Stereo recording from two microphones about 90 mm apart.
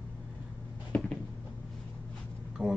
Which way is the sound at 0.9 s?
15° left (ahead or behind).